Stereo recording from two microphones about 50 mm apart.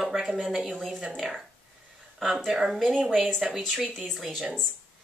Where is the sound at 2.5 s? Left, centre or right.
Centre.